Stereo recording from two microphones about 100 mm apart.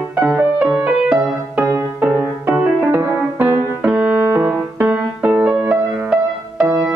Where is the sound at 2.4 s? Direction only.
20° right (ahead or behind).